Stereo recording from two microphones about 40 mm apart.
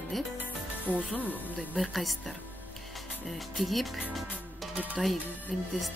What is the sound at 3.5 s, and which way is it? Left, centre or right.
Speech, centre.